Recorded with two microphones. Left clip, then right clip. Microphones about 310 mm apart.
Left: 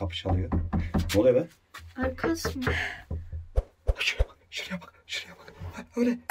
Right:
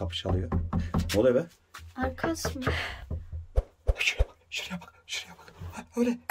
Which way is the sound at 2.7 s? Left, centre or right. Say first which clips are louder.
Left 3 dB; centre.